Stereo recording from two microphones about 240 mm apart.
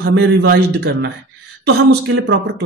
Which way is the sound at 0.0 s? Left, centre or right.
Right.